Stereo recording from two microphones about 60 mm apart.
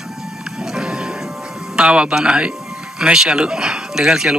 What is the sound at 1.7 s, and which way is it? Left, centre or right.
Speech, centre.